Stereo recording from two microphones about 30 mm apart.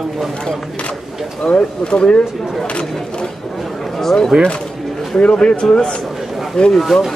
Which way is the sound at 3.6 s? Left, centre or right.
Centre.